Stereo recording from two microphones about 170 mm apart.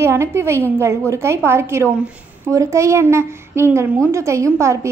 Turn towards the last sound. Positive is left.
turn(degrees=-15)  # may be behind; listen again after turning